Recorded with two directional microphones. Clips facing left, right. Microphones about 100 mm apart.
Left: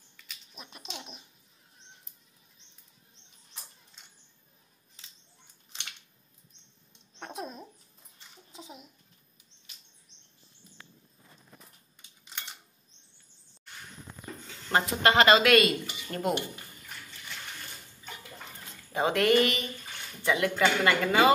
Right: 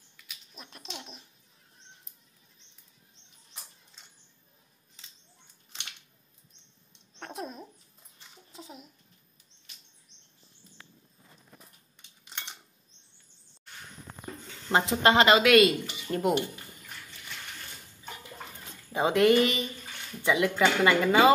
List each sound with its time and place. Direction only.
0.5 s speech: 5° left (ahead or behind)
7.2 s a sound: centre (ahead or behind)
14.7 s speech: 20° right (ahead or behind)
18.9 s speech: 15° right (ahead or behind)